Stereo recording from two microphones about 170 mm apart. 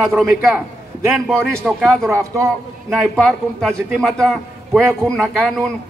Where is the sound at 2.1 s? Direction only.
20° right (ahead or behind).